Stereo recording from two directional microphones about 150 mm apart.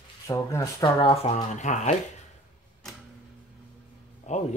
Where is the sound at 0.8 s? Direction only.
40° left (ahead or behind).